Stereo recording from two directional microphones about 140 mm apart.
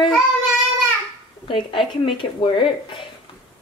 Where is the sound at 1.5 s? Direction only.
35° left (ahead or behind).